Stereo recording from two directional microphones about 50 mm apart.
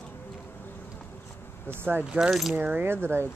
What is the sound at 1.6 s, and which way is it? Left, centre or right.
Speech, right.